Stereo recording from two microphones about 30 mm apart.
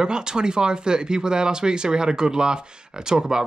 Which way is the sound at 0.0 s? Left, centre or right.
Right.